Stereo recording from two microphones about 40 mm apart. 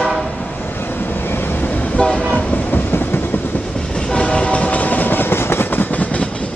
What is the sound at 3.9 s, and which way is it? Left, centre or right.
Train, left.